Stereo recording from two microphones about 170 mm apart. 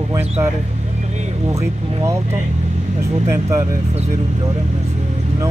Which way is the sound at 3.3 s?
15° right (ahead or behind).